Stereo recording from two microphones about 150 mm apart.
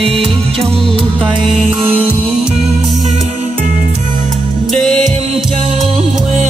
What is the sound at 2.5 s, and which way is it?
Music, 45° right (ahead or behind).